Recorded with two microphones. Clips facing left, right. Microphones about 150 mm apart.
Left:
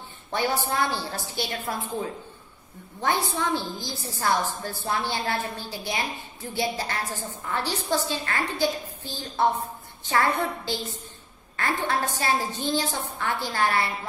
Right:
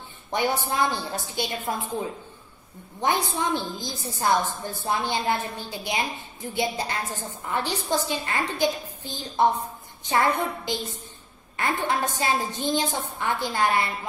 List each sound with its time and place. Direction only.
0.3 s a woman's voice: 20° right (ahead or behind)
3.0 s a woman's voice: 20° right (ahead or behind)